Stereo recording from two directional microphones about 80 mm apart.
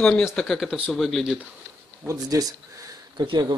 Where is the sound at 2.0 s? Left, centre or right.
Right.